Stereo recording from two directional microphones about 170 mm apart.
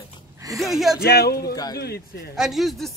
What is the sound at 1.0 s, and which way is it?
Speech, 65° left (ahead or behind).